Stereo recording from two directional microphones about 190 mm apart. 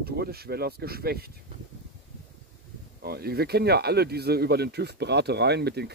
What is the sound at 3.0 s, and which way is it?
Speech, 55° right (ahead or behind).